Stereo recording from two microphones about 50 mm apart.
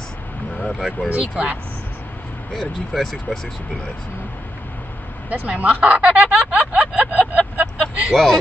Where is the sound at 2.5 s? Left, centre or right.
Centre.